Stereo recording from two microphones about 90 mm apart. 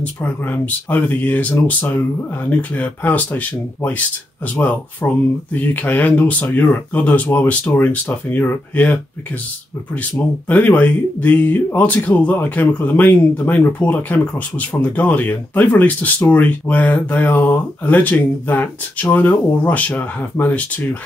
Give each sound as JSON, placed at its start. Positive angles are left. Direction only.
{"t": 0.0, "sound": "speech", "side_deg": 20}
{"t": 10.5, "sound": "speech", "side_deg": 15}